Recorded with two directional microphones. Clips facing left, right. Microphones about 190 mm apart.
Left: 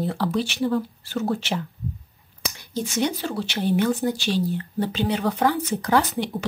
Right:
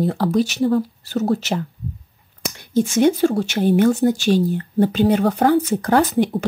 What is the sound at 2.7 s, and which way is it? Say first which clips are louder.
Speech: right 9 dB; 50° right (ahead or behind).